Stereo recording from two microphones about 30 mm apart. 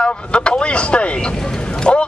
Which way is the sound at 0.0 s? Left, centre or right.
Left.